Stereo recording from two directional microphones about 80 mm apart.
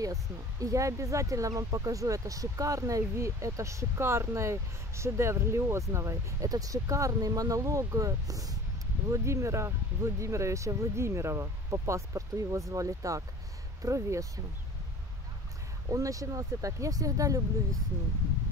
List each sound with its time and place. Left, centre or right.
0.0 s speech: right
9.1 s speech: right
15.9 s speech: right